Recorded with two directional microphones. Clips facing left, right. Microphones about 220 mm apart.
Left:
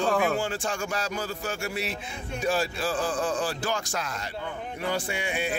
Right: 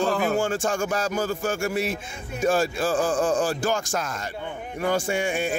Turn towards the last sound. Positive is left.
turn(degrees=-45)  # may be behind; listen again after turning